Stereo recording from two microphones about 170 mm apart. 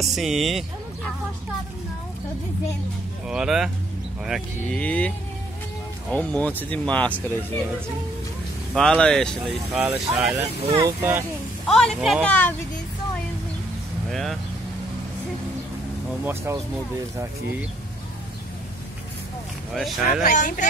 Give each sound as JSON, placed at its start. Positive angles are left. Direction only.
{"t": 0.0, "sound": "speech", "side_deg": 0}
{"t": 3.3, "sound": "speech", "side_deg": -5}
{"t": 8.7, "sound": "speech", "side_deg": 5}
{"t": 10.8, "sound": "speech", "side_deg": -15}
{"t": 11.6, "sound": "speech", "side_deg": 5}
{"t": 14.1, "sound": "speech", "side_deg": 0}
{"t": 16.3, "sound": "speech", "side_deg": -15}
{"t": 19.7, "sound": "speech", "side_deg": 0}
{"t": 20.2, "sound": "speech", "side_deg": 50}